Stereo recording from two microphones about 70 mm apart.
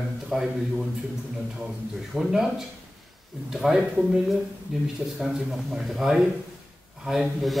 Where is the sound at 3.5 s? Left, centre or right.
Centre.